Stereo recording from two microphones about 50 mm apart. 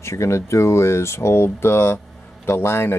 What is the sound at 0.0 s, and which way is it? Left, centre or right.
Speech, left.